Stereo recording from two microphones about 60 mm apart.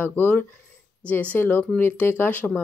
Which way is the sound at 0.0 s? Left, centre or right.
Left.